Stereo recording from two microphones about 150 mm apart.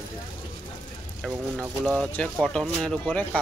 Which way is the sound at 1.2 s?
5° left (ahead or behind).